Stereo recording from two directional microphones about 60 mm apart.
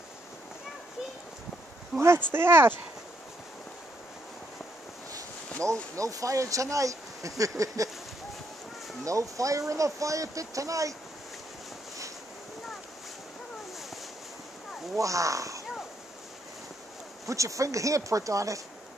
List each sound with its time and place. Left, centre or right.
1.9 s speech: centre
2.3 s speech: right
5.1 s speech: right
9.0 s speech: right
15.0 s speech: right
17.3 s speech: right